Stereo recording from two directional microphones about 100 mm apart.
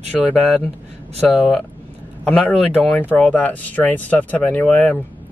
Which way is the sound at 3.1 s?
15° left (ahead or behind).